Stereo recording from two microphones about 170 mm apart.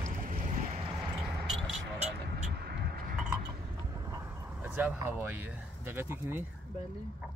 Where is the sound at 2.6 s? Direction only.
70° right (ahead or behind).